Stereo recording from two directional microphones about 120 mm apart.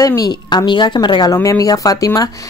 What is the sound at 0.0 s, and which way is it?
A woman's voice, 30° left (ahead or behind).